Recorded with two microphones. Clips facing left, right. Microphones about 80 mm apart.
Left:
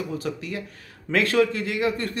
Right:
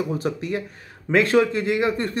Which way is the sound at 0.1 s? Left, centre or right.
Right.